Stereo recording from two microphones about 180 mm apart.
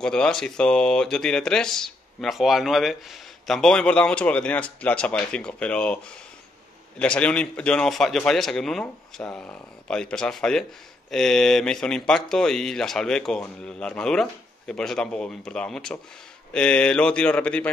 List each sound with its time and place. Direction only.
0.0 s speech: 5° left (ahead or behind)